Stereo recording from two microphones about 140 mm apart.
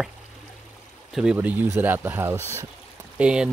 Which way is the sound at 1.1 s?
5° right (ahead or behind).